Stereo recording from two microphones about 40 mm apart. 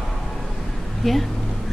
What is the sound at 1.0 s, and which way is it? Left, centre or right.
Speech, centre.